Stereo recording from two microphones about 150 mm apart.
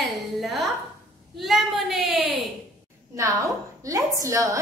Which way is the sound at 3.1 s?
20° right (ahead or behind).